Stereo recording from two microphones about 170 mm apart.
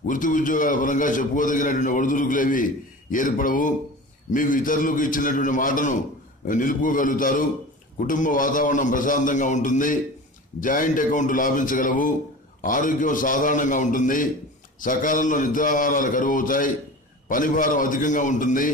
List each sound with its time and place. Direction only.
0.0 s a man's voice: 50° left (ahead or behind)